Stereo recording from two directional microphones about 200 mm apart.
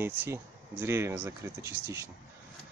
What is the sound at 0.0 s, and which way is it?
Speech, 10° right (ahead or behind).